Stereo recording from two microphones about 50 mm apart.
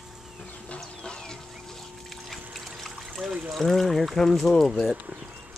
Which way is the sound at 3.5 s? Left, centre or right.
Centre.